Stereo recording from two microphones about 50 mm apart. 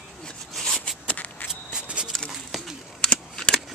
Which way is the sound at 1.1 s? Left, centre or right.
Left.